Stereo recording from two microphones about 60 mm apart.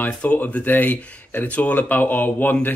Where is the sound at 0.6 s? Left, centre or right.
Left.